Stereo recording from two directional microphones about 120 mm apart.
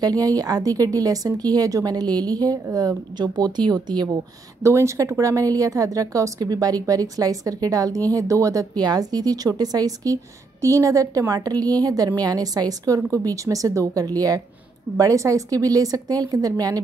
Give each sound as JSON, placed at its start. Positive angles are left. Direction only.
{"t": 0.4, "sound": "a woman's voice", "side_deg": -30}
{"t": 4.6, "sound": "a woman's voice", "side_deg": -25}